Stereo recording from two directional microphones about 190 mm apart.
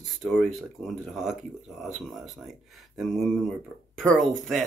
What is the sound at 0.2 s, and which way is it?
Speech, centre (ahead or behind).